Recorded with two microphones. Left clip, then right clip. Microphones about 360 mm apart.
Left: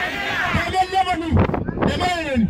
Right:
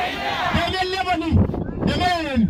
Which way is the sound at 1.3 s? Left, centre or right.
Left.